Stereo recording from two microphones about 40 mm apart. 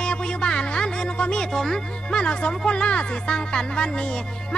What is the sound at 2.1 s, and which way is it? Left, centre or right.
Speech, left.